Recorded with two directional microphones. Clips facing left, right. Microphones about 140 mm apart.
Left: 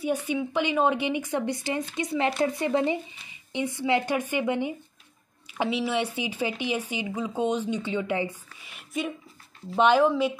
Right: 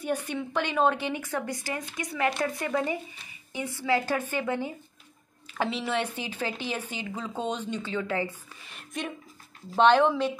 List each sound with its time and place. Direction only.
0.0 s a woman's voice: 10° left (ahead or behind)